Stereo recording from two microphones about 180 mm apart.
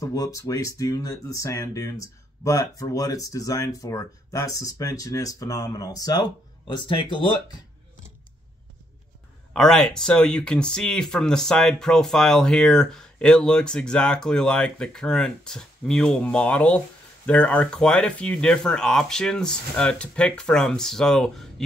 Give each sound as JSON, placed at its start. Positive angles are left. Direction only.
{"t": 0.0, "sound": "speech", "side_deg": 20}
{"t": 9.5, "sound": "speech", "side_deg": 5}